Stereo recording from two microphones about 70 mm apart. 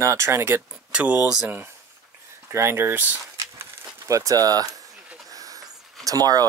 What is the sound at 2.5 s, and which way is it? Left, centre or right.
Speech, right.